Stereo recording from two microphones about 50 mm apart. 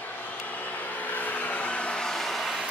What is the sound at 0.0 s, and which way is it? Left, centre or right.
Vehicle, left.